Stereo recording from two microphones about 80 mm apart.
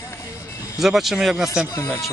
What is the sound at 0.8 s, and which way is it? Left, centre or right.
Speech, centre.